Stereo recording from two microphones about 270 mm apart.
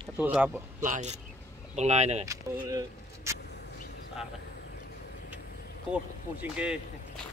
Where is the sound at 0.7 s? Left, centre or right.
Right.